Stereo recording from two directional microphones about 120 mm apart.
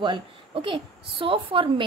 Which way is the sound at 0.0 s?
40° right (ahead or behind).